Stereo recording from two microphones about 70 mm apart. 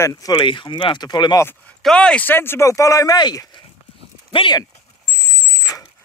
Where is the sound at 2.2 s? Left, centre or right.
Left.